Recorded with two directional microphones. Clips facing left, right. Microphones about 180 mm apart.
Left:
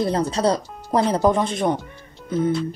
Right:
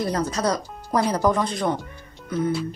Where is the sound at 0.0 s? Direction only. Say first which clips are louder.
Left 4 dB; 30° left (ahead or behind).